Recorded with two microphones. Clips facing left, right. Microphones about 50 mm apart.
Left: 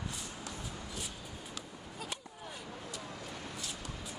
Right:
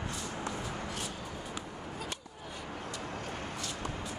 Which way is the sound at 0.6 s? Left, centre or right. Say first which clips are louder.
Right 5 dB; right.